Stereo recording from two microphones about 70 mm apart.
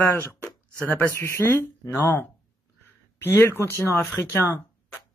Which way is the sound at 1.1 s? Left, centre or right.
Left.